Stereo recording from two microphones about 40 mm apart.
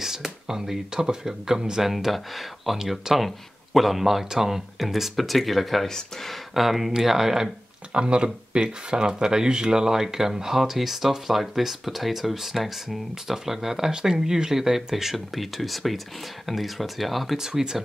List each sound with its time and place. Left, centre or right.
0.0 s speech: centre
5.9 s speech: centre
6.5 s speech: centre
7.9 s speech: right; by 17.4 s centre
17.4 s speech: centre